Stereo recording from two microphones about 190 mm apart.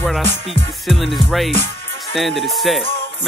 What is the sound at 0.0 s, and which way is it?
Music, 5° left (ahead or behind).